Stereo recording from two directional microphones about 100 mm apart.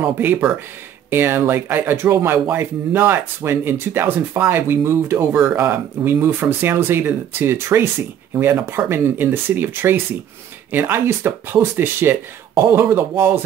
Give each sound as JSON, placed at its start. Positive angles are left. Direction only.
{"t": 0.0, "sound": "speech", "side_deg": -20}